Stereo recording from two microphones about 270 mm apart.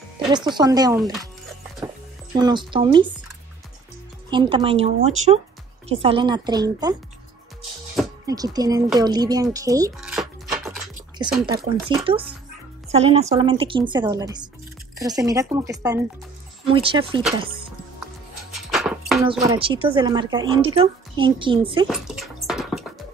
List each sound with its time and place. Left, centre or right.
0.3 s a woman's voice: centre
2.3 s a woman's voice: centre
4.3 s a woman's voice: centre
8.3 s a woman's voice: centre
9.9 s music: centre
11.4 s a woman's voice: centre
18.5 s dog: centre
19.3 s a woman's voice: centre
21.8 s dog: centre